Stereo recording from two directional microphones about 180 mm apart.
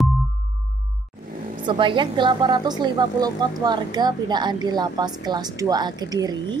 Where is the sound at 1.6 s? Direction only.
25° right (ahead or behind).